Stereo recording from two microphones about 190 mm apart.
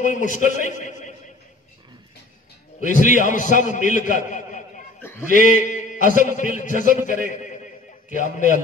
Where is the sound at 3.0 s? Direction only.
40° left (ahead or behind).